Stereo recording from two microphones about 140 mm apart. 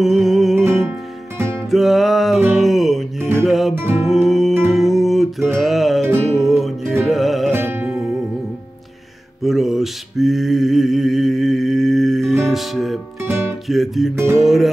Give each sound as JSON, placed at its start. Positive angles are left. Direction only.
{"t": 0.0, "sound": "music", "side_deg": 0}
{"t": 1.7, "sound": "music", "side_deg": 0}
{"t": 3.7, "sound": "music", "side_deg": -15}
{"t": 4.0, "sound": "music", "side_deg": 0}
{"t": 7.5, "sound": "music", "side_deg": -15}
{"t": 9.4, "sound": "mantra", "side_deg": 0}
{"t": 13.2, "sound": "music", "side_deg": -15}
{"t": 13.7, "sound": "guitar", "side_deg": 0}